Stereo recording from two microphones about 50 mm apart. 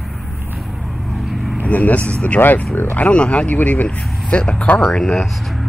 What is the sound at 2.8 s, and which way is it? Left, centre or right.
Speech, left.